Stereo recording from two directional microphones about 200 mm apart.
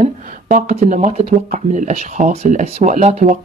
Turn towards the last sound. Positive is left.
turn(degrees=-35)  # may be behind; listen again after turning